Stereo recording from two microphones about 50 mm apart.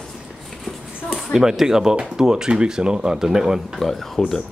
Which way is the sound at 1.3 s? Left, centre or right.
Centre.